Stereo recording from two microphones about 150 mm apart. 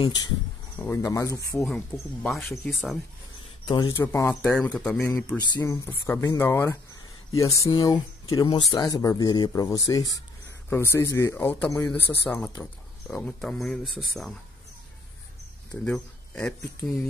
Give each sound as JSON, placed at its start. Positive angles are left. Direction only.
{"t": 0.0, "sound": "speech", "side_deg": 25}
{"t": 0.7, "sound": "speech", "side_deg": 15}
{"t": 2.2, "sound": "speech", "side_deg": 0}
{"t": 3.6, "sound": "speech", "side_deg": 30}
{"t": 4.0, "sound": "speech", "side_deg": 15}
{"t": 4.6, "sound": "speech", "side_deg": 5}
{"t": 5.4, "sound": "speech", "side_deg": 20}
{"t": 15.7, "sound": "speech", "side_deg": 10}